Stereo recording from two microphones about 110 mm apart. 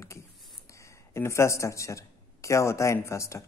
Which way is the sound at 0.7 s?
30° left (ahead or behind).